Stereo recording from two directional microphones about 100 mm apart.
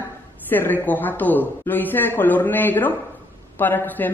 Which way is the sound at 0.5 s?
20° left (ahead or behind).